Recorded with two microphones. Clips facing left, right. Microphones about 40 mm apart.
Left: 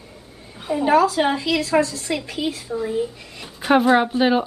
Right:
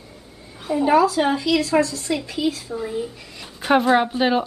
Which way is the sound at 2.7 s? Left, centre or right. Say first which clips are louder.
Left 3 dB; centre.